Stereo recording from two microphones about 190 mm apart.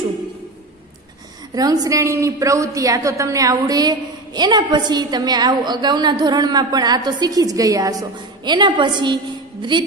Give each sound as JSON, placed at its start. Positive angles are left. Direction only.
{"t": 1.5, "sound": "a woman's voice", "side_deg": -20}